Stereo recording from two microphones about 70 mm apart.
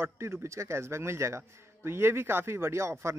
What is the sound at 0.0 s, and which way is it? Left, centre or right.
Speech, right.